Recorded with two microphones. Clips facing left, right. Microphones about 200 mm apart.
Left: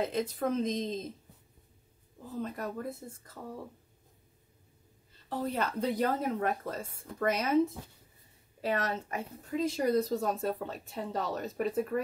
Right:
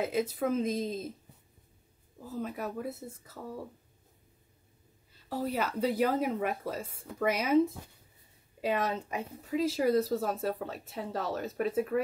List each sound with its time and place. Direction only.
0.0 s speech: 5° right (ahead or behind)
2.2 s speech: 10° right (ahead or behind)
5.3 s speech: 10° right (ahead or behind)